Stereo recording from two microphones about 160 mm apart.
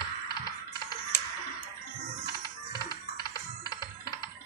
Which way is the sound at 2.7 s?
25° left (ahead or behind).